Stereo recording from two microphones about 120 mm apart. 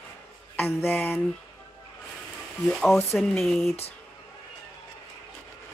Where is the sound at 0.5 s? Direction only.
20° left (ahead or behind).